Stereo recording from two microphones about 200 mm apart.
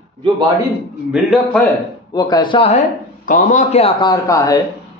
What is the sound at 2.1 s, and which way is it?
A man's voice, 20° left (ahead or behind).